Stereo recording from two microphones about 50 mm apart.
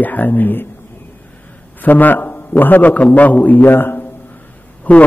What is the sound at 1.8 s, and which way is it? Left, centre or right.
A man's voice, left.